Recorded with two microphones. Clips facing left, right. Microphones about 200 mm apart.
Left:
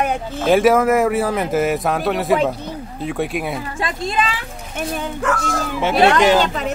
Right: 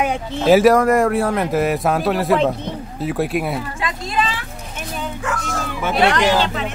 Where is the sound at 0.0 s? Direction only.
Centre (ahead or behind).